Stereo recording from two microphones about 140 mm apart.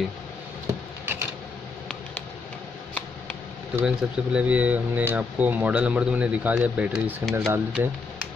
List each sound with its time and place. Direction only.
3.7 s speech: 5° right (ahead or behind)